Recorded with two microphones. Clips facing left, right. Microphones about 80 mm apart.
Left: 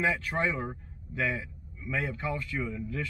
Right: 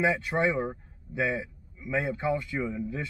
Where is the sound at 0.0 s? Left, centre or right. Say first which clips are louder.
Right 3 dB; centre.